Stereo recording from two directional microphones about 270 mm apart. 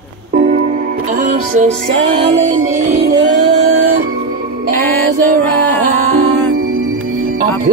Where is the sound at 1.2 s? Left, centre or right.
Right.